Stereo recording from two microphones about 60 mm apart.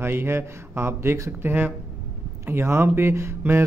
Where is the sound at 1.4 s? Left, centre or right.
Right.